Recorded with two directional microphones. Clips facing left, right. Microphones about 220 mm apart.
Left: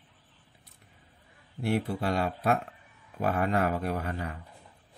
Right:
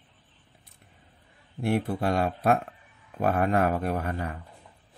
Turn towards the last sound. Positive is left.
turn(degrees=-50)  # may be behind; listen again after turning